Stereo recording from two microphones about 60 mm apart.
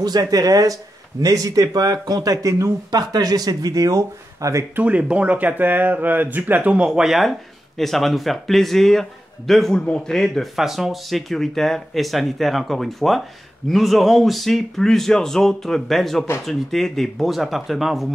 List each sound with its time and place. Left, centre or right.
0.0 s speech: right
1.2 s speech: right
4.7 s speech: right
6.9 s a man's voice: centre
10.3 s speech: centre